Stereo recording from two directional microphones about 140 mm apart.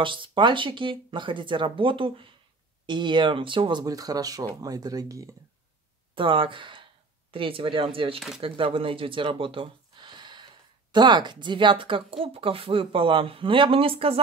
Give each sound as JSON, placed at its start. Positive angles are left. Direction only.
{"t": 0.0, "sound": "speech", "side_deg": -35}
{"t": 6.1, "sound": "speech", "side_deg": -40}